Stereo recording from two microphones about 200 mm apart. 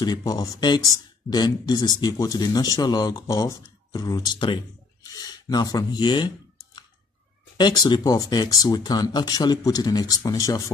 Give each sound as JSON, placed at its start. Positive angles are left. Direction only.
{"t": 0.0, "sound": "speech", "side_deg": 20}
{"t": 5.0, "sound": "a sound", "side_deg": 20}
{"t": 7.5, "sound": "speech", "side_deg": 20}